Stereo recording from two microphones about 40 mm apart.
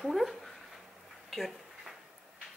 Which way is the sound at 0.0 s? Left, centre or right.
Centre.